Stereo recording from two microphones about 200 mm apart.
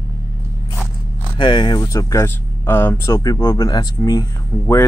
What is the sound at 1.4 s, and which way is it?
Speech, 25° left (ahead or behind).